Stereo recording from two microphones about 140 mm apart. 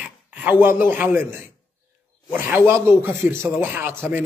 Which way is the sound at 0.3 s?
10° right (ahead or behind).